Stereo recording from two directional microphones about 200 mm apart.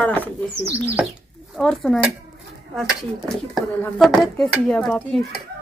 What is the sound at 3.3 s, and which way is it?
Speech, 5° left (ahead or behind).